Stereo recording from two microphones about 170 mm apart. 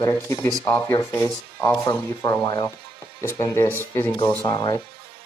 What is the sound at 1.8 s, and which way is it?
Speech, 20° left (ahead or behind).